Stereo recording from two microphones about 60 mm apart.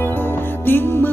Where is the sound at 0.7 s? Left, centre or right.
Left.